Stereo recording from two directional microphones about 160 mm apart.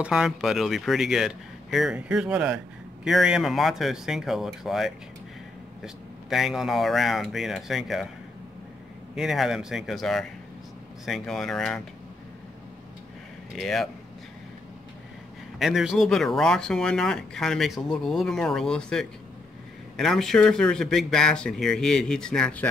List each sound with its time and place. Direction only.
0.0 s speech: 5° right (ahead or behind)
6.3 s speech: centre (ahead or behind)
9.1 s speech: centre (ahead or behind)
13.6 s speech: centre (ahead or behind)
15.6 s speech: centre (ahead or behind)